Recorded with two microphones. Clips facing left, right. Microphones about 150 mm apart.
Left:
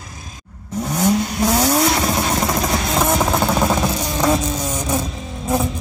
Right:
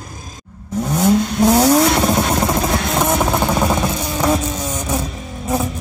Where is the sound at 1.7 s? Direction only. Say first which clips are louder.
Right 4 dB; centre (ahead or behind).